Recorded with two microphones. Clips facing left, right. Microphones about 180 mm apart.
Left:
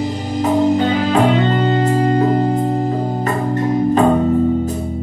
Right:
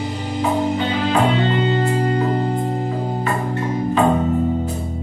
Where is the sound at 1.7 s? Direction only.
45° left (ahead or behind).